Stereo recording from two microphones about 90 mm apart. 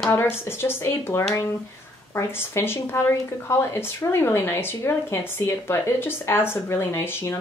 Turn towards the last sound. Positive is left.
turn(degrees=30)  # may be behind; listen again after turning